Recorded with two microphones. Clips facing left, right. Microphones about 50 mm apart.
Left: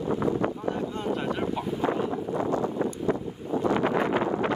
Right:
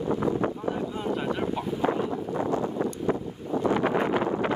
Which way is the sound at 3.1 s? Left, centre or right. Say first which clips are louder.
Even; centre.